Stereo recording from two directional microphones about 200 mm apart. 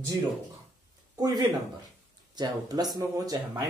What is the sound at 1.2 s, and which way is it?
A man's voice, 20° right (ahead or behind).